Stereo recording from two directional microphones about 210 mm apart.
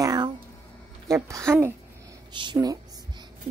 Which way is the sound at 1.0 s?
15° right (ahead or behind).